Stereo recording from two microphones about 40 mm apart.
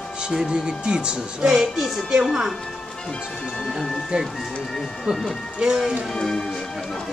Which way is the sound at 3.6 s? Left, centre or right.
Centre.